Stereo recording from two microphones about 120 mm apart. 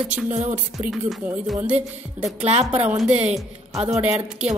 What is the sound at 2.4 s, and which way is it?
Speech, 65° right (ahead or behind).